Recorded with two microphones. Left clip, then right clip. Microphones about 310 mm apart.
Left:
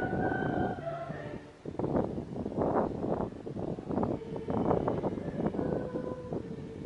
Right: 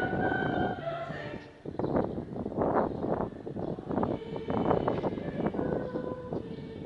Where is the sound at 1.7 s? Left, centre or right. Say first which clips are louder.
Right 2 dB; centre.